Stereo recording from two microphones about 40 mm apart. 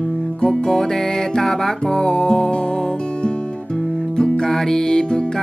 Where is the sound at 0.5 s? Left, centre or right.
Centre.